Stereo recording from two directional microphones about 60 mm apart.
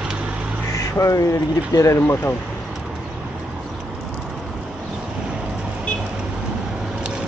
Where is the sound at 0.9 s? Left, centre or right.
Left.